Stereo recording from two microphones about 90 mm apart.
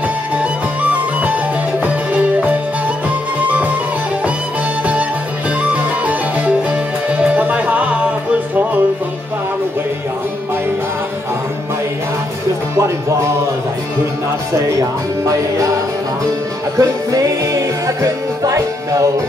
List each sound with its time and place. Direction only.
0.4 s music: 15° right (ahead or behind)
5.6 s music: 15° right (ahead or behind)
12.7 s music: 30° right (ahead or behind)
14.5 s music: 40° right (ahead or behind)
16.7 s music: 40° right (ahead or behind)